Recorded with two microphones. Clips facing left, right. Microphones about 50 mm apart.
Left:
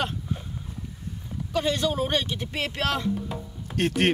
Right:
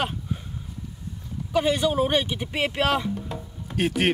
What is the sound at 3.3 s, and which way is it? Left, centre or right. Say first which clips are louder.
Music: even; centre.